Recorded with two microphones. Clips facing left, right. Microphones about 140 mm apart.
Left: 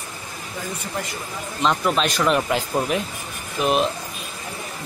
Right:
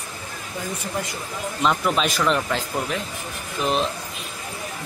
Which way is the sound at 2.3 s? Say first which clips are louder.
Left 3 dB; 10° left (ahead or behind).